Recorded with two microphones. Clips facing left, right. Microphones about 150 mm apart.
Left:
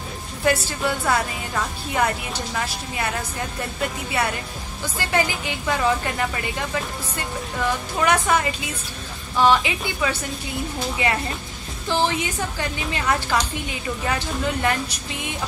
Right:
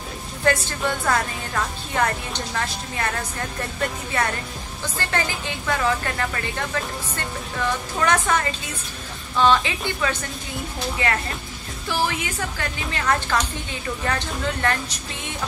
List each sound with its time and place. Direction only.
0.5 s speech: 10° left (ahead or behind)
4.8 s speech: 10° left (ahead or behind)